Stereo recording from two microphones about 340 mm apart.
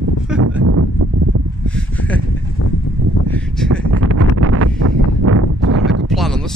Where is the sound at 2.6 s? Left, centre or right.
Left.